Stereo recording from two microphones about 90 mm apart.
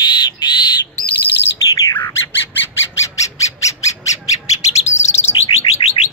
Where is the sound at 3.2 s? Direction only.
35° left (ahead or behind).